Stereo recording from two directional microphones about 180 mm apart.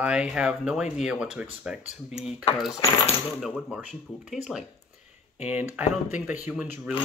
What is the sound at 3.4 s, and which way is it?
Speech, 5° right (ahead or behind).